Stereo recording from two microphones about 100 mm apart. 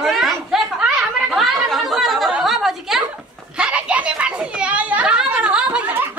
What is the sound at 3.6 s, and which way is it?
Children playing, 10° right (ahead or behind).